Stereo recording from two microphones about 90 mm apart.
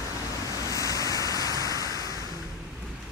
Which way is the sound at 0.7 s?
40° left (ahead or behind).